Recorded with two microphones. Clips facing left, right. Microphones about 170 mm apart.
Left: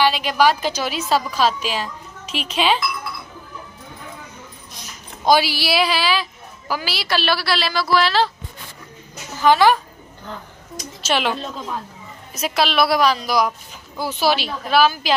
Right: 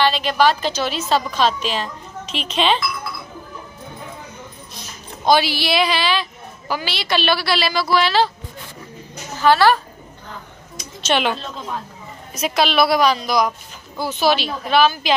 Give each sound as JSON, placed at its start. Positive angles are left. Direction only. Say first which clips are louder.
{"t": 0.0, "sound": "a woman's voice", "louder": "even", "side_deg": 10}
{"t": 5.2, "sound": "a woman's voice", "louder": "even", "side_deg": 10}
{"t": 9.4, "sound": "a woman's voice", "louder": "even", "side_deg": 15}
{"t": 11.0, "sound": "a woman's voice", "louder": "right 2 dB", "side_deg": 5}